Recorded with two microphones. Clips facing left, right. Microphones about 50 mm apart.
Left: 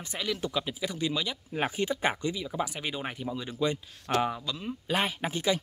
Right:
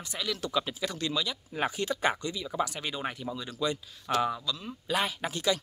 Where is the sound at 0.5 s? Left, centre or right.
Centre.